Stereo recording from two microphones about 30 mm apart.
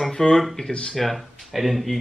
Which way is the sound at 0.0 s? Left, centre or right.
Centre.